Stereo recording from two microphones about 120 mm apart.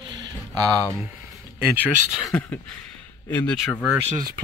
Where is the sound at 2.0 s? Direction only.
Centre (ahead or behind).